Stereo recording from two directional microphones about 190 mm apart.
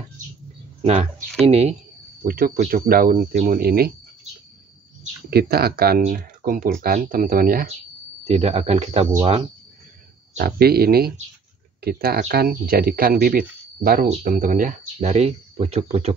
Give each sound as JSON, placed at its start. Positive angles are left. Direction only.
{"t": 1.4, "sound": "speech", "side_deg": -35}
{"t": 2.2, "sound": "speech", "side_deg": -50}
{"t": 5.3, "sound": "speech", "side_deg": -55}
{"t": 8.3, "sound": "speech", "side_deg": -35}
{"t": 10.3, "sound": "speech", "side_deg": -55}